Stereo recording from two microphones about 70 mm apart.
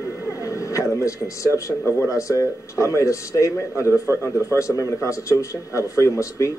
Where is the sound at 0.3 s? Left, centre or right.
Left.